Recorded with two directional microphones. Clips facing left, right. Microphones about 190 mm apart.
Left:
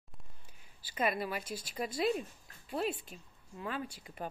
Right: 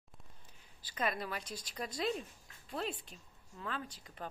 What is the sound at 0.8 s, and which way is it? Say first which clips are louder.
A woman's voice: left 4 dB; 10° left (ahead or behind).